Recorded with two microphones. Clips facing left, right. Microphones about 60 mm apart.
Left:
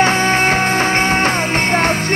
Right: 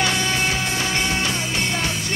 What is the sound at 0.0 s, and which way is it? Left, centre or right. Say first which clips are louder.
Music: left 8 dB; left.